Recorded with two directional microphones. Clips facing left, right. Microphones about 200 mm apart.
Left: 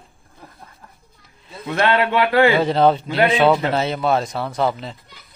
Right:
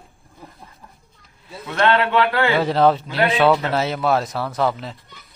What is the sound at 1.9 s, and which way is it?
Speech, 15° left (ahead or behind).